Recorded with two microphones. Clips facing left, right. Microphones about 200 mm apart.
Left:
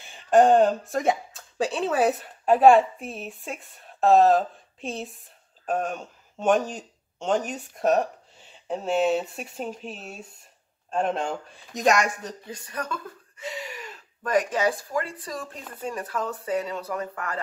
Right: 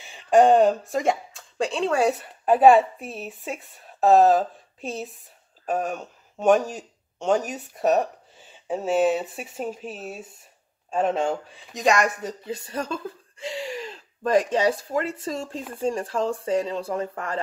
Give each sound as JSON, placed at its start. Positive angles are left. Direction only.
{"t": 0.0, "sound": "speech", "side_deg": 0}
{"t": 12.4, "sound": "speech", "side_deg": -25}